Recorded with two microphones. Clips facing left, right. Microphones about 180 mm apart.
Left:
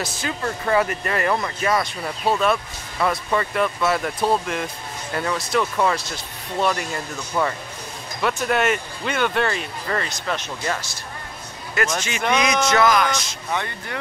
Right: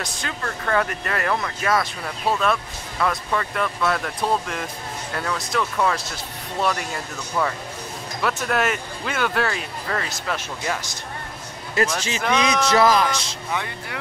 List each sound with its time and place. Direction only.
0.0 s speech: 5° left (ahead or behind); by 11.0 s 10° right (ahead or behind)
11.7 s music: 30° right (ahead or behind)